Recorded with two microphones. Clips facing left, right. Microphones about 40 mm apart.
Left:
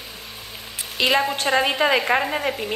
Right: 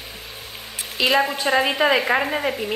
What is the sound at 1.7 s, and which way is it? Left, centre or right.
Speech, right.